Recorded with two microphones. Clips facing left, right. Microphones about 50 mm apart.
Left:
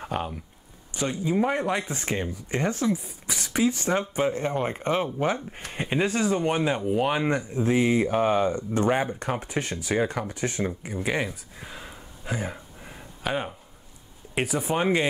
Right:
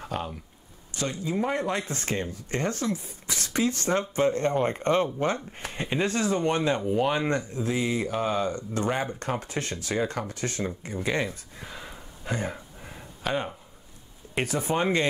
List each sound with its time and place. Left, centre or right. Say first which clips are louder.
0.0 s speech: left 2 dB; centre